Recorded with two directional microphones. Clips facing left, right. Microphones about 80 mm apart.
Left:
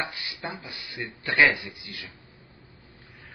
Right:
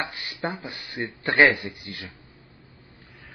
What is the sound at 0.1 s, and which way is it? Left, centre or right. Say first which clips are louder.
A man's voice: right 5 dB; right.